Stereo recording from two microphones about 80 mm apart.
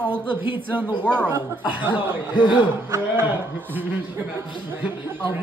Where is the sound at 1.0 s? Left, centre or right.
Centre.